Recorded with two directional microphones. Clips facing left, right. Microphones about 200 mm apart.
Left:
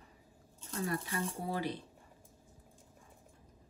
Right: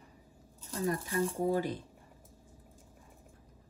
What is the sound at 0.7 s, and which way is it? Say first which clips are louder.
Speech: right 5 dB; 40° right (ahead or behind).